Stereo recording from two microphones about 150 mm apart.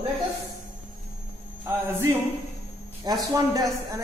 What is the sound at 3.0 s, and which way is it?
Speech, 25° right (ahead or behind).